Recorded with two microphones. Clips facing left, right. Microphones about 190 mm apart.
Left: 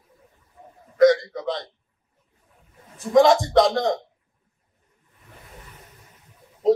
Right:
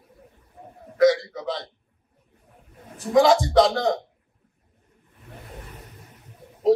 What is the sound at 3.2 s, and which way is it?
Speech, centre (ahead or behind).